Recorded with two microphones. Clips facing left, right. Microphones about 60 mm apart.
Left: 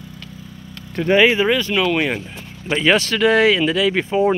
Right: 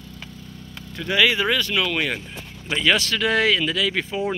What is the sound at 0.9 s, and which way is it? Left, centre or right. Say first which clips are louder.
Speech: left 6 dB; left.